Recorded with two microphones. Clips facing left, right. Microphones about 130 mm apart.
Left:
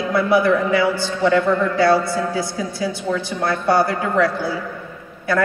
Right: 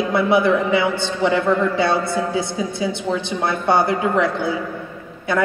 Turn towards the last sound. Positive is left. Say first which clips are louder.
# left 1 dB
turn(degrees=-20)  # may be behind; listen again after turning